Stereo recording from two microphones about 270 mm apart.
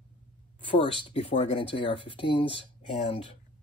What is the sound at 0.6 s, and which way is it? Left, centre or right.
Speech, centre.